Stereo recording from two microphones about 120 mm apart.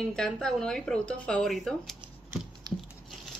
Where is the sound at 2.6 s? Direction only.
35° right (ahead or behind).